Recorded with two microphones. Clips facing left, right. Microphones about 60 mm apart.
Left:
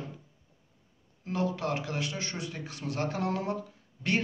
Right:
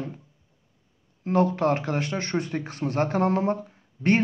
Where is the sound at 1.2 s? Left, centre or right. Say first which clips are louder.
Right 9 dB; right.